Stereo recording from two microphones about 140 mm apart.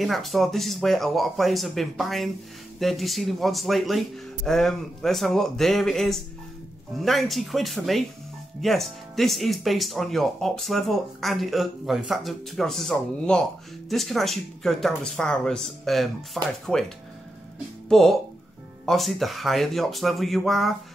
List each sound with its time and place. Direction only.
0.0 s speech: centre (ahead or behind)
17.8 s speech: centre (ahead or behind)